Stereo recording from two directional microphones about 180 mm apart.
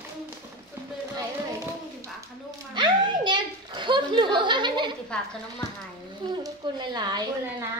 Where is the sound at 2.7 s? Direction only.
25° right (ahead or behind).